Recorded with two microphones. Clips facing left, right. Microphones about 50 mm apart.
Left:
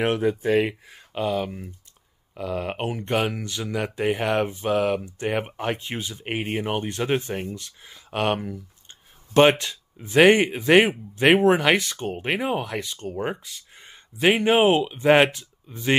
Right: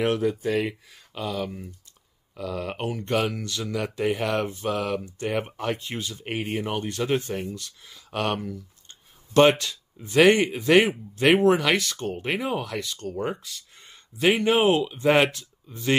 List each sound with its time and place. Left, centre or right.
0.0 s speech: left